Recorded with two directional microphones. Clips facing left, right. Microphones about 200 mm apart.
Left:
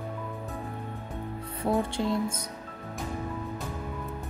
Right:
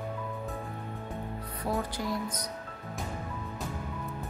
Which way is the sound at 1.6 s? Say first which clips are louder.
Left 5 dB; 25° left (ahead or behind).